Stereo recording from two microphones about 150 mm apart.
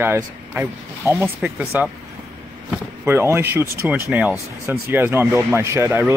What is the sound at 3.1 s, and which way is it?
Speech, 15° right (ahead or behind).